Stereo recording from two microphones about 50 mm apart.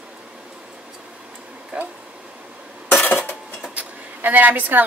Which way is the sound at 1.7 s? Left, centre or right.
Right.